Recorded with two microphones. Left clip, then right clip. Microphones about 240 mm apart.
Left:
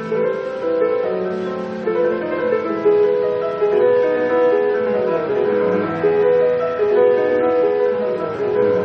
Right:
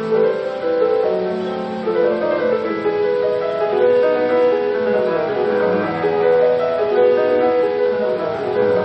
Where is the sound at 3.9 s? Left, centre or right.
Centre.